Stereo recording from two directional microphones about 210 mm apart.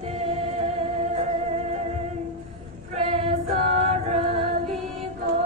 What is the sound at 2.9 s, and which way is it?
Female singing, 30° right (ahead or behind).